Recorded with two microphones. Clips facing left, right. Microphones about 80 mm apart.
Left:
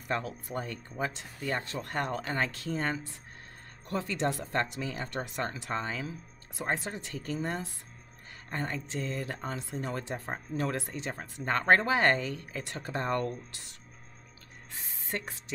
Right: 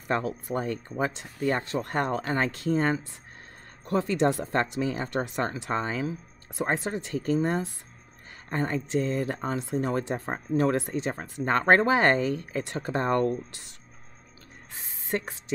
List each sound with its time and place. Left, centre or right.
0.1 s speech: right
15.0 s ratchet: right